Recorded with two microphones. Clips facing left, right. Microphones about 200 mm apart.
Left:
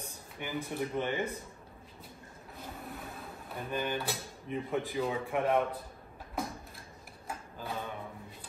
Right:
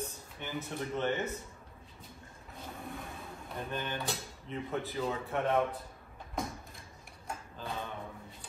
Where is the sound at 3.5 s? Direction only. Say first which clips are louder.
Left 3 dB; 10° left (ahead or behind).